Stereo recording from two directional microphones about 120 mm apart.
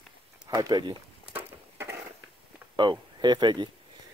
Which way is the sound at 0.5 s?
30° right (ahead or behind).